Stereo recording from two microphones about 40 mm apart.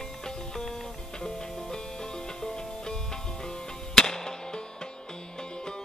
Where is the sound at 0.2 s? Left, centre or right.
Centre.